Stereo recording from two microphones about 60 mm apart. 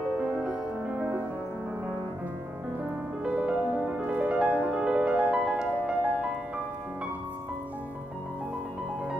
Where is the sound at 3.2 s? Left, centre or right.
Centre.